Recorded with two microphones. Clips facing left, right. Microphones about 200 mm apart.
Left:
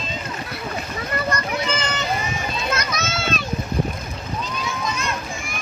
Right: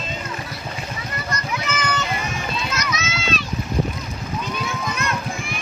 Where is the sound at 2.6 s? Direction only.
50° left (ahead or behind).